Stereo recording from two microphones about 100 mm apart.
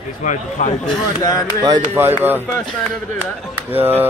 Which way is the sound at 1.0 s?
35° left (ahead or behind).